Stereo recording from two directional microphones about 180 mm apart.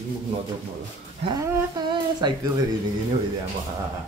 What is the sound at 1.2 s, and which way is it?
Speech, 20° right (ahead or behind).